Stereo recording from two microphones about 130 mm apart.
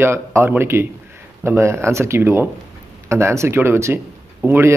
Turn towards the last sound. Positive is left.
turn(degrees=-15)  # may be behind; listen again after turning